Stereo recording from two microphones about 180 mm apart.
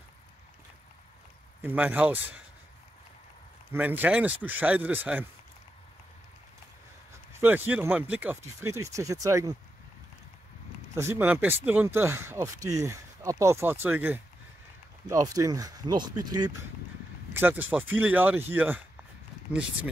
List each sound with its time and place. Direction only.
1.6 s speech: 10° right (ahead or behind)
3.7 s speech: 10° right (ahead or behind)
7.3 s speech: 10° right (ahead or behind)
11.0 s speech: 15° right (ahead or behind)
17.3 s speech: 10° right (ahead or behind)